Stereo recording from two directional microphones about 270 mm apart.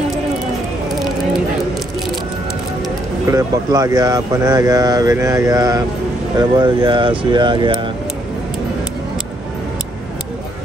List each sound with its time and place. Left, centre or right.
3.3 s speech: centre